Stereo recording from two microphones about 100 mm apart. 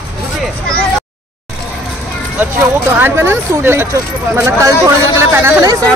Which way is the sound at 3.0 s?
25° right (ahead or behind).